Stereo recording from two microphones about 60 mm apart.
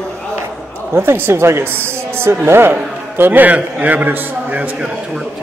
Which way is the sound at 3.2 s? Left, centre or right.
Right.